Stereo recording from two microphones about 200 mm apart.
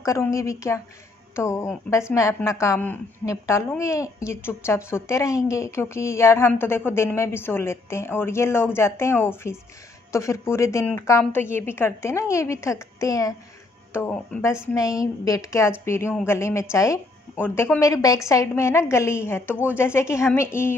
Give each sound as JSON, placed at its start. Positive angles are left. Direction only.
{"t": 0.0, "sound": "a woman's voice", "side_deg": 15}